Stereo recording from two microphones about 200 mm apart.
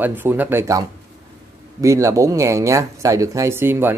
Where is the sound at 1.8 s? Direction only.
15° right (ahead or behind).